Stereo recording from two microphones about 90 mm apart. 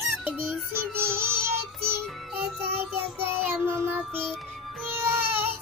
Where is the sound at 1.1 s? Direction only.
30° right (ahead or behind).